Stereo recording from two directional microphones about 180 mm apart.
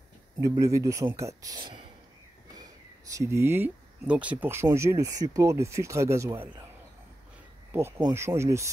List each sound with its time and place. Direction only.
0.4 s speech: 15° right (ahead or behind)
7.7 s speech: 15° right (ahead or behind)